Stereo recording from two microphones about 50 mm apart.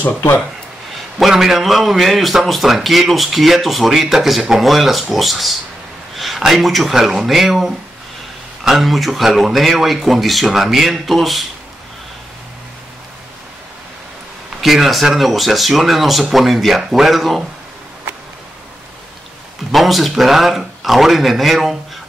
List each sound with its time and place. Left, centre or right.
0.0 s speech: left
1.1 s a man's voice: centre
14.6 s a man's voice: centre
19.7 s a man's voice: centre